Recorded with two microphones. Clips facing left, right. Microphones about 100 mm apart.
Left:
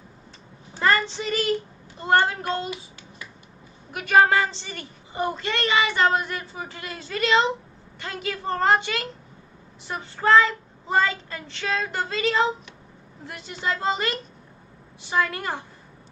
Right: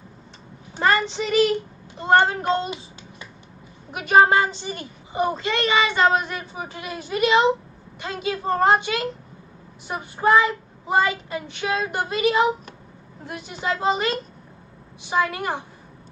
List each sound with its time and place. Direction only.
0.7 s a child's voice: 20° right (ahead or behind)